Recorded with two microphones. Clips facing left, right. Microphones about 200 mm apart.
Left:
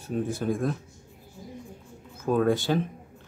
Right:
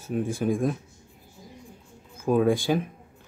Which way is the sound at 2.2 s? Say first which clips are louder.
Right 2 dB; 10° right (ahead or behind).